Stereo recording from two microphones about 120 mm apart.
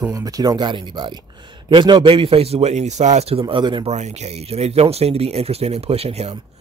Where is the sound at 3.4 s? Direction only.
40° right (ahead or behind).